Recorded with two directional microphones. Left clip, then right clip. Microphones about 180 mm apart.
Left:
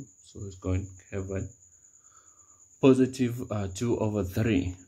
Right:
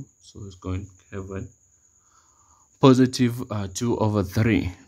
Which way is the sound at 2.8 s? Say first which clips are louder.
Right 5 dB; 50° right (ahead or behind).